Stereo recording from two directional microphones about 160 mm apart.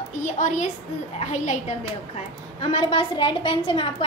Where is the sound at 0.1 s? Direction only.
50° left (ahead or behind).